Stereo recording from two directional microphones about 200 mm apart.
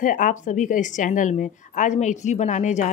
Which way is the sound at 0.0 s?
40° left (ahead or behind).